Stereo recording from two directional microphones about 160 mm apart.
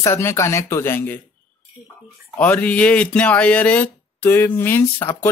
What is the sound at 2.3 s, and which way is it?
Speech, 10° left (ahead or behind).